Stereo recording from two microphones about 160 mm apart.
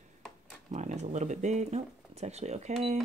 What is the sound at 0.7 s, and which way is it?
Speech, 45° right (ahead or behind).